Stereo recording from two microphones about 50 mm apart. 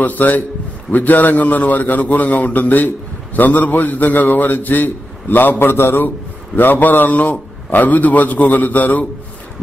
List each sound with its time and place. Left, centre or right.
0.0 s a man's voice: left